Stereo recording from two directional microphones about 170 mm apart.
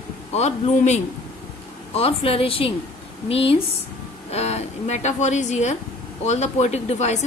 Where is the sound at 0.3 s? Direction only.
40° left (ahead or behind).